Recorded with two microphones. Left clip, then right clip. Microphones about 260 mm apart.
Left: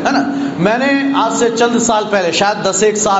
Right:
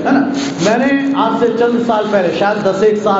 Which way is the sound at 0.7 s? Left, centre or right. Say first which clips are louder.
Even; left.